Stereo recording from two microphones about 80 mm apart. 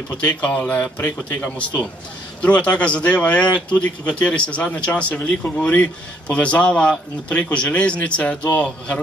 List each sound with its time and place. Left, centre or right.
0.2 s speech: centre